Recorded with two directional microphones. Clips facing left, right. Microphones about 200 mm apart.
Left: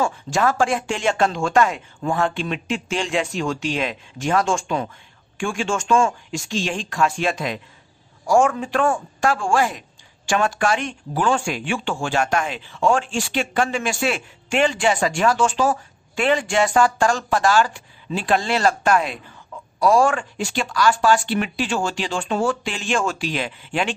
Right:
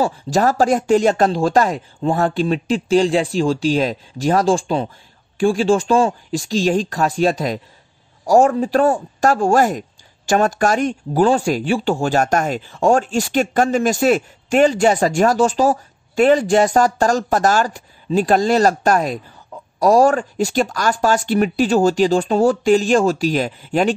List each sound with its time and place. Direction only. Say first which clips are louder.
0.0 s speech: right 4 dB; 35° right (ahead or behind)